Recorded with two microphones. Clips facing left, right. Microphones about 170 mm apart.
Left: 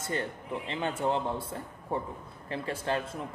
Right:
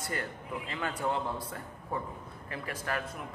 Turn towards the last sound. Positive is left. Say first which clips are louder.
# left 4 dB
turn(degrees=25)  # may be behind; listen again after turning